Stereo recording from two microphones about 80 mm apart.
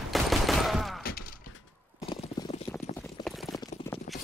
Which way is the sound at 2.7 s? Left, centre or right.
Left.